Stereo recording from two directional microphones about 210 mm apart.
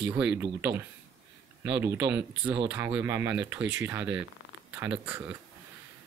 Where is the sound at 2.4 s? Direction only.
25° right (ahead or behind).